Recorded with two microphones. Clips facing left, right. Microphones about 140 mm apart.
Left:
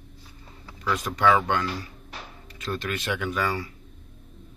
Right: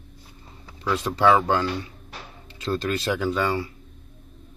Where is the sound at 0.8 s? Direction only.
30° right (ahead or behind).